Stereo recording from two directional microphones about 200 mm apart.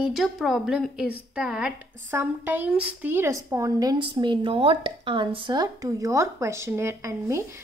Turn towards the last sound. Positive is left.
turn(degrees=-15)  # may be behind; listen again after turning